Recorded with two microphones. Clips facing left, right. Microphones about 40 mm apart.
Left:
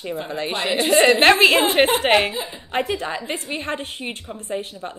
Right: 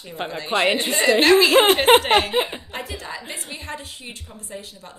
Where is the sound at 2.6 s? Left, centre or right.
Left.